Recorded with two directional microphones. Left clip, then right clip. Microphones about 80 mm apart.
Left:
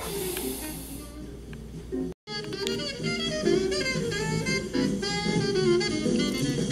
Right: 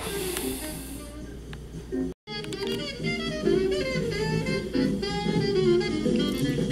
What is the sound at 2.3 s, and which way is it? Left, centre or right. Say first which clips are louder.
Music: left 1 dB; centre.